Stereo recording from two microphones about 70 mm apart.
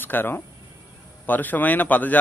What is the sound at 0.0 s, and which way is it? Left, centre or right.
Speech, left.